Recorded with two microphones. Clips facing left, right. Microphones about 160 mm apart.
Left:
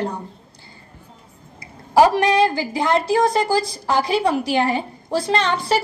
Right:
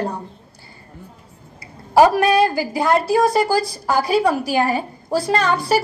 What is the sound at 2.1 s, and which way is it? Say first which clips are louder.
A woman's voice: right 1 dB; 20° left (ahead or behind).